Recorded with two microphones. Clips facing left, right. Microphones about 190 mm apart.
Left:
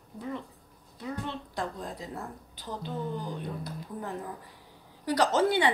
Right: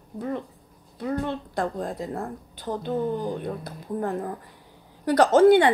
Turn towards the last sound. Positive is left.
turn(degrees=-55)  # may be behind; listen again after turning